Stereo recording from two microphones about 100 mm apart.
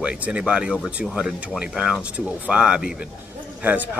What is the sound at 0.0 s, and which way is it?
A man's voice, 10° right (ahead or behind).